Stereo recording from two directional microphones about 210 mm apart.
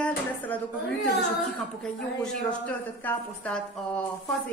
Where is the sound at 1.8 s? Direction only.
5° left (ahead or behind).